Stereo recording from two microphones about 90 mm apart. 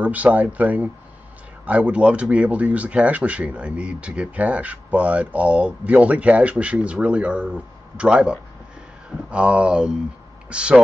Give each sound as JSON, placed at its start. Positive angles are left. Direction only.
{"t": 0.0, "sound": "speech", "side_deg": -15}